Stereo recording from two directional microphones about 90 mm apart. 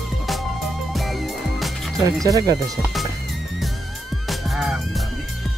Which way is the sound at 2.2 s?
45° right (ahead or behind).